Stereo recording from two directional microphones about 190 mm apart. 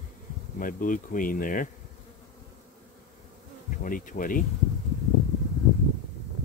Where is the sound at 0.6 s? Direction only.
45° left (ahead or behind).